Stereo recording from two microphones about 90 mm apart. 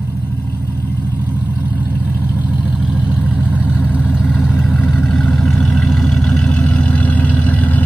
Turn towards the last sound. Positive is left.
turn(degrees=20)  # may be behind; listen again after turning